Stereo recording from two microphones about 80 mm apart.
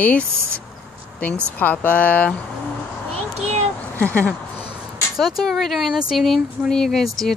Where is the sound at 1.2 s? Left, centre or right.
Left.